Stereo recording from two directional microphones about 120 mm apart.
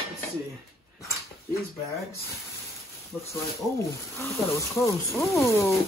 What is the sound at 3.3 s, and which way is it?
Speech, 25° left (ahead or behind).